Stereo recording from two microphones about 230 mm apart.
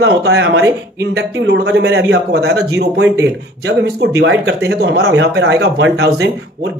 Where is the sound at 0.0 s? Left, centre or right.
Right.